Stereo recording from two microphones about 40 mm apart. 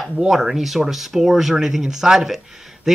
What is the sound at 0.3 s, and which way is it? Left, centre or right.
Speech, centre.